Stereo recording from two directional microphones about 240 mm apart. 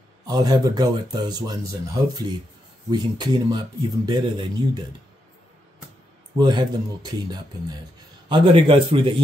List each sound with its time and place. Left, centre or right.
0.3 s speech: centre
2.9 s speech: centre
6.3 s speech: centre
8.3 s a man's voice: centre